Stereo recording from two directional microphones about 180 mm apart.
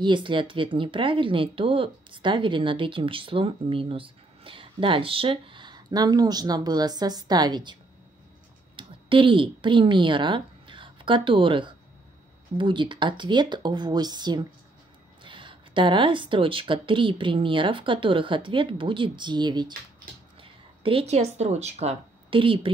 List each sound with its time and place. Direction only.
0.0 s speech: 25° right (ahead or behind)
8.7 s speech: 30° right (ahead or behind)